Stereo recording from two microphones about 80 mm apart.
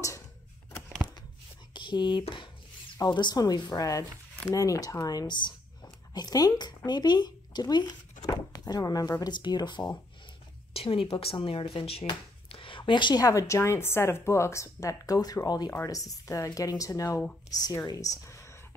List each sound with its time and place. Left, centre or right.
1.7 s a sound: left
3.0 s a woman's voice: left
6.1 s speech: left
8.3 s a sound: left
9.2 s a woman's voice: left
10.9 s speech: left
12.6 s a sound: left
13.2 s a woman's voice: left
15.7 s a woman's voice: left